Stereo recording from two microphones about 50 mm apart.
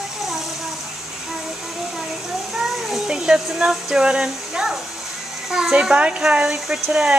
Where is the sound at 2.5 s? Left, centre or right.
Centre.